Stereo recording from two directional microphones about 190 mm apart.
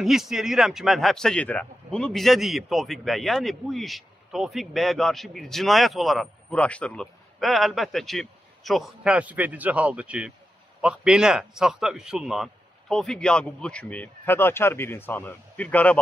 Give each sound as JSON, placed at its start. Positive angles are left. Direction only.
{"t": 0.0, "sound": "speech", "side_deg": 0}